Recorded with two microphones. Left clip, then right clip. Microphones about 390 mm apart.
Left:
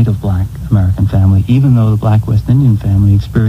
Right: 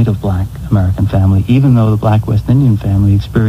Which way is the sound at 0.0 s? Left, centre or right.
Left.